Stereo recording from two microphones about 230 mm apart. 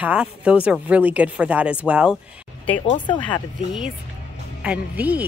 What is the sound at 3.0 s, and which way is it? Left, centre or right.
Speech, left.